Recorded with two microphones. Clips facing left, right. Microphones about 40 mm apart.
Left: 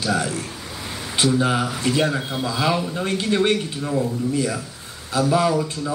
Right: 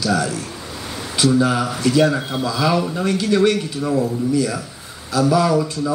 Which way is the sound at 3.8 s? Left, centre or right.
Right.